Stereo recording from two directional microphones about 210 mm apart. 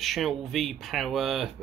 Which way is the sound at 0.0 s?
Centre (ahead or behind).